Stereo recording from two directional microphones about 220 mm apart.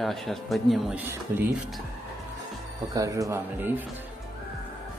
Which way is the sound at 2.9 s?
15° right (ahead or behind).